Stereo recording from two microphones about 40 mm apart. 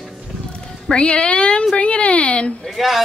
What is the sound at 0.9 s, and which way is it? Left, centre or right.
Speech, left.